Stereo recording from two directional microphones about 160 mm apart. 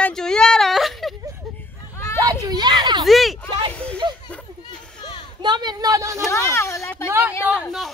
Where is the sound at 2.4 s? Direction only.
25° right (ahead or behind).